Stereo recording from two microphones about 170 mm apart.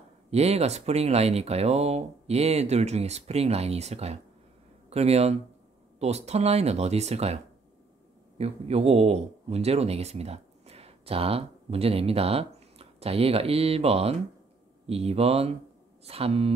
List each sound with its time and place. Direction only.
0.3 s speech: 40° right (ahead or behind)
8.4 s speech: 35° right (ahead or behind)